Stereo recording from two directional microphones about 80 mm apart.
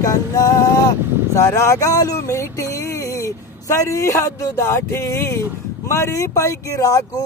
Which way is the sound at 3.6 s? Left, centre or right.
Left.